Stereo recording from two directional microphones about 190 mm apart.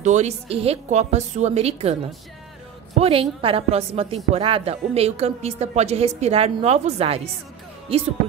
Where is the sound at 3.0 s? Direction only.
30° right (ahead or behind).